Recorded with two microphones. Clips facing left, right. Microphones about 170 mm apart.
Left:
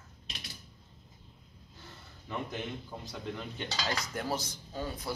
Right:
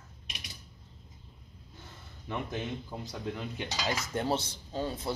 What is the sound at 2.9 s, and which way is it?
Dishes, 10° right (ahead or behind).